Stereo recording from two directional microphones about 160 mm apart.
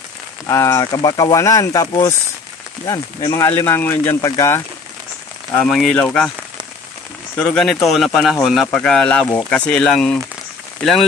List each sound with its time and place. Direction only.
0.5 s speech: 20° left (ahead or behind)
5.5 s speech: 5° left (ahead or behind)
7.3 s speech: 5° left (ahead or behind)